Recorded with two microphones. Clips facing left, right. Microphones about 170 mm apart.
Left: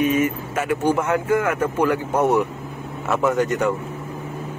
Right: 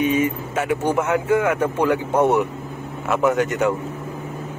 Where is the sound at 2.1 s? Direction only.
25° right (ahead or behind).